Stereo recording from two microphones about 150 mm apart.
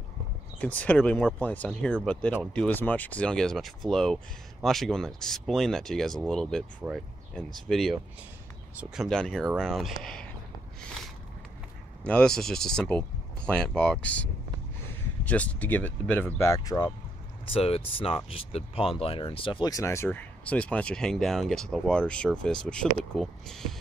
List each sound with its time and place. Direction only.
0.6 s speech: 10° left (ahead or behind)
12.0 s speech: 5° left (ahead or behind); by 16.9 s 25° left (ahead or behind)
17.5 s speech: 40° left (ahead or behind); by 23.7 s 5° left (ahead or behind)